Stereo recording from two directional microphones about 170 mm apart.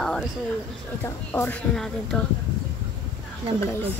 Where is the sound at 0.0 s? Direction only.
5° left (ahead or behind).